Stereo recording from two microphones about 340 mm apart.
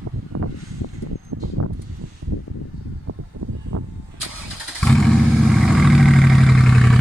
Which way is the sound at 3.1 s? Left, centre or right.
Right.